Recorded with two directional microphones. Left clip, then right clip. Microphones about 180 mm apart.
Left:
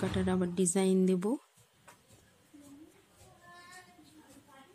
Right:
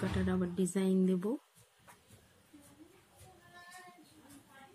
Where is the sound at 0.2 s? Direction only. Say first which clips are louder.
Left 5 dB; 55° left (ahead or behind).